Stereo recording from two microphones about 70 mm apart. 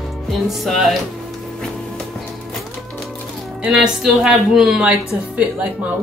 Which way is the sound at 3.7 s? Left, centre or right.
Centre.